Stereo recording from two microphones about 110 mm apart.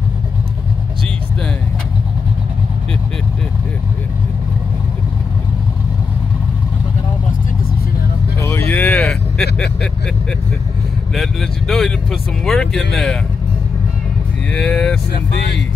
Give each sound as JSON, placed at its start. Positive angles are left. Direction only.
{"t": 8.4, "sound": "vehicle", "side_deg": 25}
{"t": 8.9, "sound": "vehicle", "side_deg": 5}
{"t": 11.1, "sound": "speech", "side_deg": 5}
{"t": 14.5, "sound": "speech", "side_deg": 10}